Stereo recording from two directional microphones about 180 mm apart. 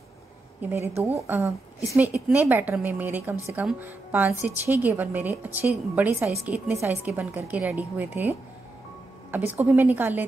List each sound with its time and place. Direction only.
0.6 s a woman's voice: 10° right (ahead or behind)
9.5 s a woman's voice: 10° right (ahead or behind)